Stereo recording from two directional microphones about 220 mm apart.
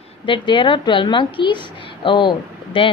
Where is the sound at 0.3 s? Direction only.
20° left (ahead or behind).